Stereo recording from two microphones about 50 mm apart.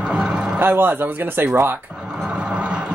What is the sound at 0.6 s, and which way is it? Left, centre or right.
Speech, right.